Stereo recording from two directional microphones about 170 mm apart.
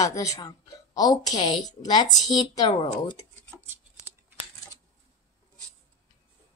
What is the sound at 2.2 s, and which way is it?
Speech, centre (ahead or behind).